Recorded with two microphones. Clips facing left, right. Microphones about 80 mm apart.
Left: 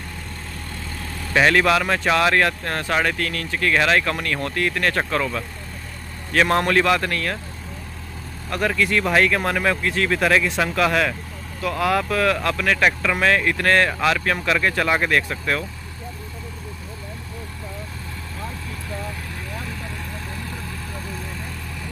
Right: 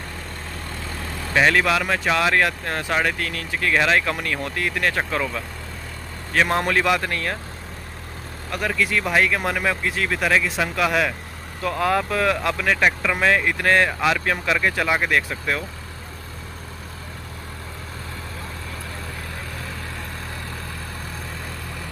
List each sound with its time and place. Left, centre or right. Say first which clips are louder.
1.3 s speech: left 2 dB; centre
8.5 s speech: left 2 dB; centre
11.6 s speech: even; right; by 15.6 s centre